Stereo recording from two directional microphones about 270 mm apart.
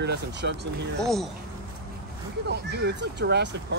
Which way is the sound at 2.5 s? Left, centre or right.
Right.